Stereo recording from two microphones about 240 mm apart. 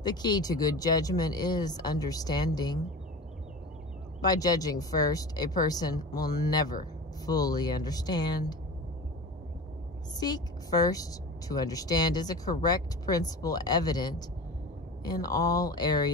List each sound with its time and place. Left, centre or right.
0.0 s a woman's voice: centre
4.2 s a woman's voice: centre
10.1 s a woman's voice: centre